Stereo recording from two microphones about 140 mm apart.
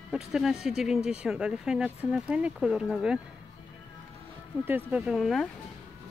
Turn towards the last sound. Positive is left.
turn(degrees=0)  # may be behind; listen again after turning